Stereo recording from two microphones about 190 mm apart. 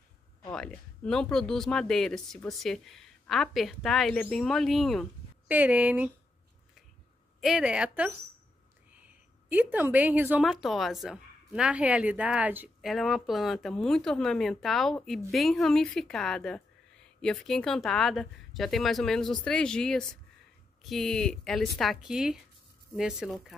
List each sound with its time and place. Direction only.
0.5 s a woman's voice: 5° left (ahead or behind)
7.3 s a woman's voice: centre (ahead or behind)